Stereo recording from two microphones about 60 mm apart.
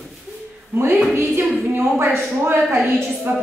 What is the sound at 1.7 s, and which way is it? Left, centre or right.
Speech, right.